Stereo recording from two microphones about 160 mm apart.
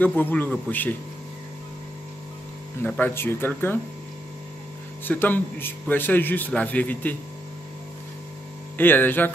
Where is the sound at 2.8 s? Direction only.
10° left (ahead or behind).